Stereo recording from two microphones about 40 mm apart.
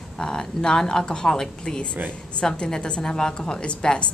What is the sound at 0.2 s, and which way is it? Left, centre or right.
A woman's voice, centre.